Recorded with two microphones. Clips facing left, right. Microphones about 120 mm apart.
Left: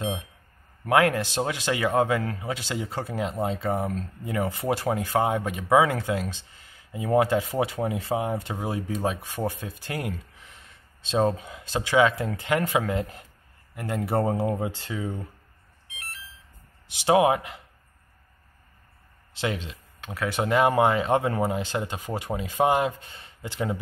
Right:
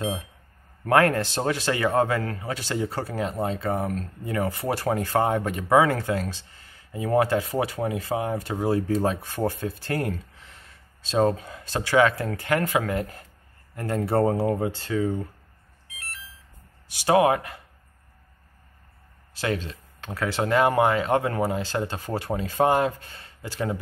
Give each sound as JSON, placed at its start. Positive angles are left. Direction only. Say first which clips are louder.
{"t": 0.8, "sound": "speech", "louder": "right 1 dB", "side_deg": 10}
{"t": 16.8, "sound": "speech", "louder": "even", "side_deg": 20}
{"t": 19.3, "sound": "speech", "louder": "right 2 dB", "side_deg": 20}